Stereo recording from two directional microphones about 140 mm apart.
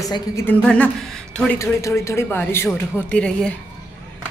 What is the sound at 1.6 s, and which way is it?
Speech, 20° left (ahead or behind).